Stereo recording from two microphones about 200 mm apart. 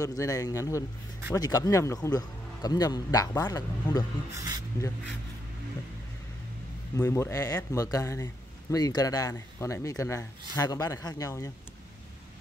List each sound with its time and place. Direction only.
0.0 s a man's voice: 15° left (ahead or behind)
7.0 s a man's voice: 15° left (ahead or behind)